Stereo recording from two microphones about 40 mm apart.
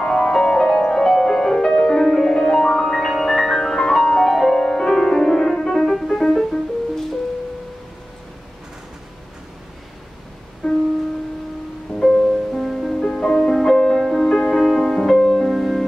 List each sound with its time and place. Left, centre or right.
0.0 s music: centre
4.6 s music: centre
10.6 s music: left
12.0 s music: centre
12.3 s music: centre
13.0 s music: left; by 14.3 s centre
14.3 s music: centre
14.6 s music: centre